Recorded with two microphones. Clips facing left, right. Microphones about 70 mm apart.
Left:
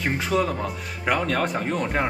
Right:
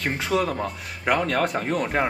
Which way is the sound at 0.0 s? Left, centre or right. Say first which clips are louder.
Left 1 dB; centre.